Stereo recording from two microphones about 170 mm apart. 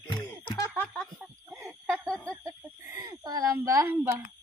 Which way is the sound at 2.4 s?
20° right (ahead or behind).